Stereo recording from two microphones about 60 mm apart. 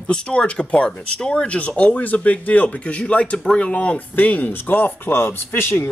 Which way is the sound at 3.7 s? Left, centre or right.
Left.